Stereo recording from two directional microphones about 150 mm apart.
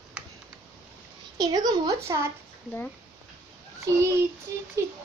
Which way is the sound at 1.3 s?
25° right (ahead or behind).